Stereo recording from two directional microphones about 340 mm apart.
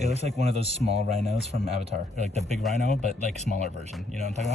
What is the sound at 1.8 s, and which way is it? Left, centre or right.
Speech, centre.